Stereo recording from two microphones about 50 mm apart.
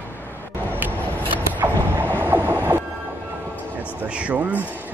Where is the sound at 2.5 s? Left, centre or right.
Right.